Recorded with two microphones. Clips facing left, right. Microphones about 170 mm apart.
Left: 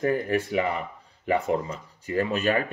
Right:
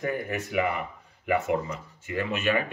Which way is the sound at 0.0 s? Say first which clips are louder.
Left 6 dB; 35° left (ahead or behind).